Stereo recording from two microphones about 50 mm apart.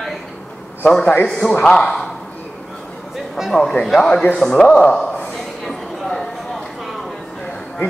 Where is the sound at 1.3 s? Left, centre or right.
Centre.